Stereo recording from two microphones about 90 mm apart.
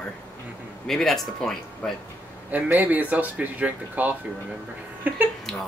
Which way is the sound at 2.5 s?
20° right (ahead or behind).